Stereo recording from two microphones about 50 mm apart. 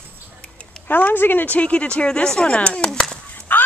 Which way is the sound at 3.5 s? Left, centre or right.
Left.